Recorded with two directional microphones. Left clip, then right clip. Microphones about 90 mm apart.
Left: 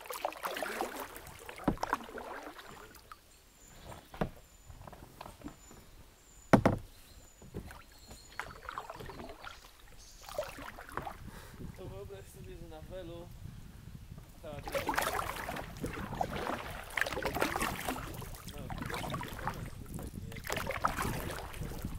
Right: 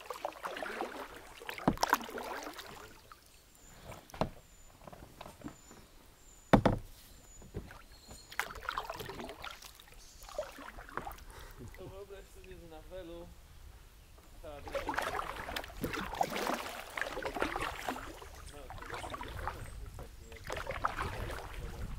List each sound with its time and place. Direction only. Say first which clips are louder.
0.1 s a sound: left 3 dB; 50° left (ahead or behind)
1.5 s rowboat: right 4 dB; 45° right (ahead or behind)
6.5 s knock: left 1 dB; 35° left (ahead or behind)
7.5 s rowboat: left 1 dB; 35° left (ahead or behind)
8.3 s rowboat: right 5 dB; 45° right (ahead or behind)
10.2 s a sound: left 2 dB; 50° left (ahead or behind)
11.8 s boat: left 1 dB; 30° left (ahead or behind)
12.7 s a sound: left 1 dB; 40° left (ahead or behind)
14.4 s boat: left 3 dB; 45° left (ahead or behind)
15.8 s boat: right 4 dB; 50° right (ahead or behind)
16.9 s boat: left 5 dB; 45° left (ahead or behind)
18.4 s boat: left 4 dB; 45° left (ahead or behind)